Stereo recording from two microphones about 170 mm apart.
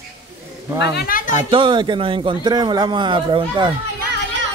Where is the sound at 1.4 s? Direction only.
30° right (ahead or behind).